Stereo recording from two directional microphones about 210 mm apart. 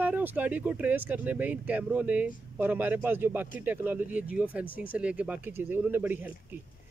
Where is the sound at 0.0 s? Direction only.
10° right (ahead or behind).